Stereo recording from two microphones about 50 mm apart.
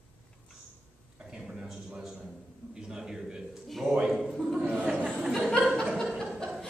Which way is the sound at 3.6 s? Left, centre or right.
Centre.